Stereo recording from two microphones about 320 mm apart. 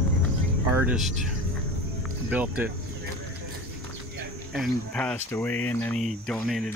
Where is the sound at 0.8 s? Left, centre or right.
Centre.